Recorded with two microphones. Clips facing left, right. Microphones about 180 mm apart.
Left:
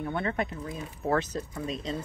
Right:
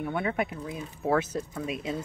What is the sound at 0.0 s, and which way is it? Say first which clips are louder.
Speech: right 1 dB; 5° right (ahead or behind).